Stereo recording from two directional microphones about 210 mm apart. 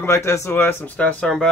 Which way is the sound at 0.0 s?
10° left (ahead or behind).